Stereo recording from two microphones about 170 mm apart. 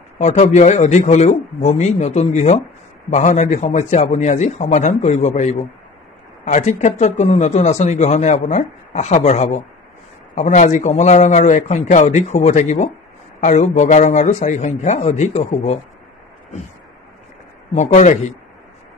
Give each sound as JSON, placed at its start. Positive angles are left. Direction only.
{"t": 0.2, "sound": "a man's voice", "side_deg": 40}
{"t": 17.7, "sound": "speech", "side_deg": 40}